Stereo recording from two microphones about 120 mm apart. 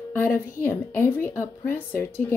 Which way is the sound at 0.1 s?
20° left (ahead or behind).